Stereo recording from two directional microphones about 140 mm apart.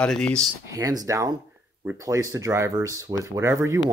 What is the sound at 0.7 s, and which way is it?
Speech, 25° right (ahead or behind).